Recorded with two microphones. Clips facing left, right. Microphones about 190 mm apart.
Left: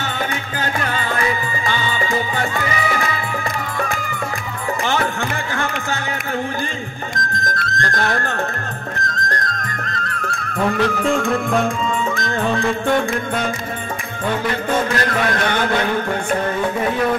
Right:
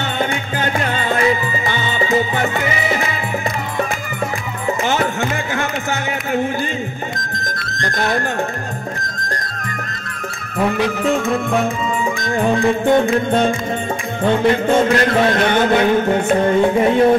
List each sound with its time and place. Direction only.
0.7 s music: 25° right (ahead or behind)
7.8 s music: 15° right (ahead or behind)
10.6 s music: 5° right (ahead or behind)
12.3 s music: 15° right (ahead or behind)